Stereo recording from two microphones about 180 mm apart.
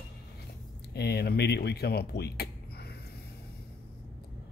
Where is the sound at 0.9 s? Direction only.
65° left (ahead or behind).